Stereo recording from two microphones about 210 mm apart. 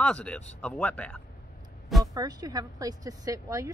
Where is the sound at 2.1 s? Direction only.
15° right (ahead or behind).